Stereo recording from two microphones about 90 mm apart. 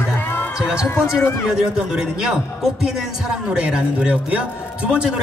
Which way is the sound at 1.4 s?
5° right (ahead or behind).